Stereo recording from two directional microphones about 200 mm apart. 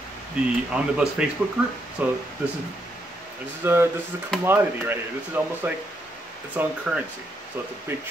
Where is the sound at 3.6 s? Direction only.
10° right (ahead or behind).